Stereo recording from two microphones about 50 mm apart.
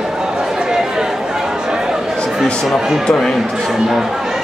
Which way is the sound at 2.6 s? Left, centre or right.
Centre.